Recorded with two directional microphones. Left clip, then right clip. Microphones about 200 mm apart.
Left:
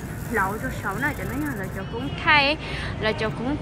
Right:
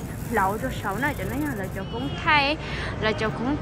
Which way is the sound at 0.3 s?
Centre (ahead or behind).